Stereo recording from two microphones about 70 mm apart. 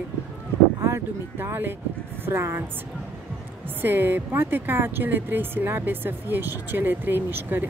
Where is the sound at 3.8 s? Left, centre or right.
Right.